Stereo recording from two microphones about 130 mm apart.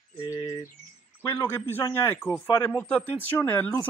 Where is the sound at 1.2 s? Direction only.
20° left (ahead or behind).